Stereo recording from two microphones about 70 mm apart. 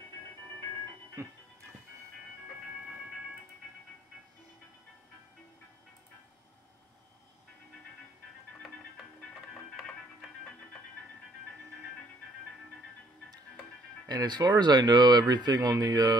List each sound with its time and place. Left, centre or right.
1.2 s music: right
14.0 s speech: right